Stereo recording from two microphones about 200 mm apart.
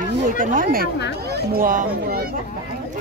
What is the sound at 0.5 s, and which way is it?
Speech, 45° right (ahead or behind).